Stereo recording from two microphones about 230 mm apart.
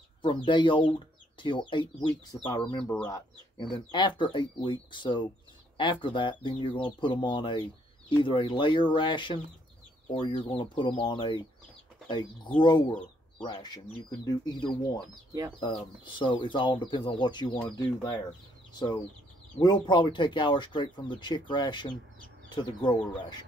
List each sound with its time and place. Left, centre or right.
0.5 s speech: left
12.5 s speech: left
17.5 s speech: centre
17.7 s speech: centre
19.6 s speech: centre